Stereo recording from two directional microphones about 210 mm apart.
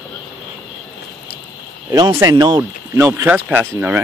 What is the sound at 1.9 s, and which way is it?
Speech, 20° right (ahead or behind).